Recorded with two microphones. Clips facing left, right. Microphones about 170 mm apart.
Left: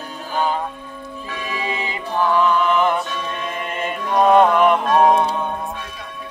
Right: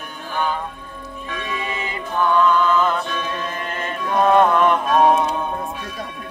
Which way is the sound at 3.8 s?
15° left (ahead or behind).